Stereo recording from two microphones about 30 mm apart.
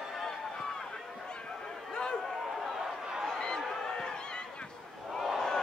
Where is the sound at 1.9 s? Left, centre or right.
Left.